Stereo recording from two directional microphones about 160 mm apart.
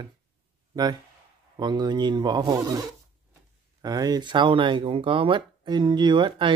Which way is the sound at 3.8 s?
25° right (ahead or behind).